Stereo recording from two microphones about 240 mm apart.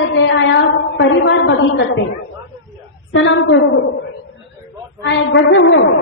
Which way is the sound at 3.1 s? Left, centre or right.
Left.